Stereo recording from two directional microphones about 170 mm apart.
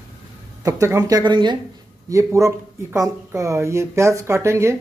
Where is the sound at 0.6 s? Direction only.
20° right (ahead or behind).